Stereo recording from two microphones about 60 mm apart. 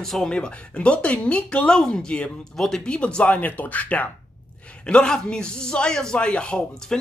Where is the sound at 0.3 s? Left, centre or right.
Centre.